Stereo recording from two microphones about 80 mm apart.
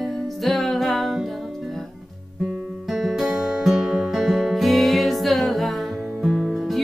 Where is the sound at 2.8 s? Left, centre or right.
Centre.